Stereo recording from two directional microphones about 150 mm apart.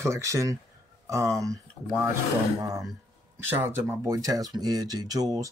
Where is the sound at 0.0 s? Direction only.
20° right (ahead or behind).